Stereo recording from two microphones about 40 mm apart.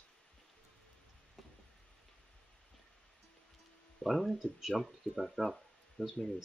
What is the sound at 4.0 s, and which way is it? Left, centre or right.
Speech, centre.